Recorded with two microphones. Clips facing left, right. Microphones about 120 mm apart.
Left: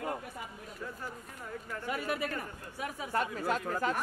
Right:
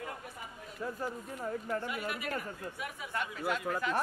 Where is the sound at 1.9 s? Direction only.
40° left (ahead or behind).